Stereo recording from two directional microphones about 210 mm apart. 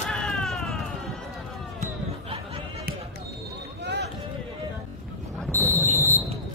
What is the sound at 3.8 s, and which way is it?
Basketball bounce, 55° right (ahead or behind).